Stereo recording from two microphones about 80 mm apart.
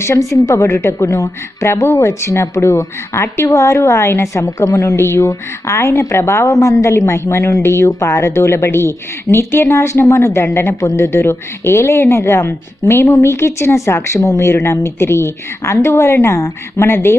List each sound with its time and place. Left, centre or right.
0.0 s a woman's voice: left